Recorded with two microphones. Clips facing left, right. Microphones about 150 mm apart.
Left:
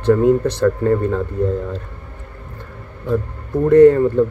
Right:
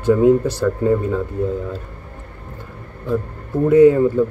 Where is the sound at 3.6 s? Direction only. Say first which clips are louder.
Left 2 dB; 5° right (ahead or behind).